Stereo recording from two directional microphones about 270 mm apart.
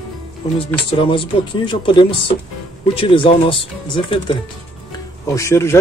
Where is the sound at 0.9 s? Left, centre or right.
Centre.